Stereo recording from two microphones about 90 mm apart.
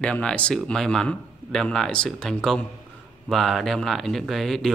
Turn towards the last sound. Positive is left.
turn(degrees=0)  # may be behind; listen again after turning